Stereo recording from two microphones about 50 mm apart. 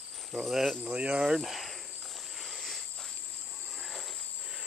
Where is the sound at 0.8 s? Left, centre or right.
Right.